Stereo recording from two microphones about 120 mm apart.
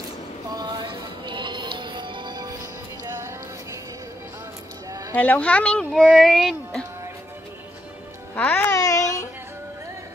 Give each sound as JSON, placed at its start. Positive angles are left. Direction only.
{"t": 0.6, "sound": "music", "side_deg": -35}
{"t": 5.1, "sound": "speech", "side_deg": 15}
{"t": 8.4, "sound": "speech", "side_deg": 15}
{"t": 8.7, "sound": "a sound", "side_deg": 30}